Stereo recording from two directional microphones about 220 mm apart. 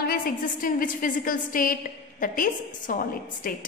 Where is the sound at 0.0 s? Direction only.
40° left (ahead or behind).